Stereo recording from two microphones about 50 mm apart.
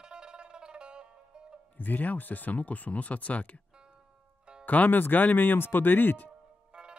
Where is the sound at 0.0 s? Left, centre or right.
Centre.